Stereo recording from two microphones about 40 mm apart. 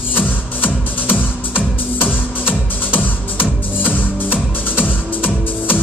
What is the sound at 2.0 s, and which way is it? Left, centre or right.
Music, right.